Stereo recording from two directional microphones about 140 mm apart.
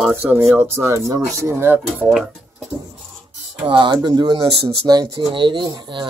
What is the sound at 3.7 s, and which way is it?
Speech, 30° right (ahead or behind).